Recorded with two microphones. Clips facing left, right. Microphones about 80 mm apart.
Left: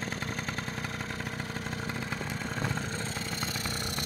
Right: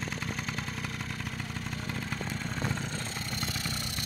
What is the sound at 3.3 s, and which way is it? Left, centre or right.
Vehicle, left.